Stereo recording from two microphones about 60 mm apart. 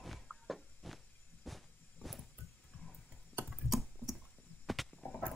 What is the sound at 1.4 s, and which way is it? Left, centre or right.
Vehicle, centre.